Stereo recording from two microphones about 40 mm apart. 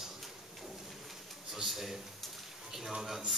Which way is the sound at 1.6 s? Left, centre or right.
Centre.